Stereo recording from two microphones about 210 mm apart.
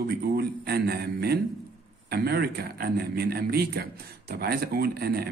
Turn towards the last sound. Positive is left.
turn(degrees=-50)  # may be behind; listen again after turning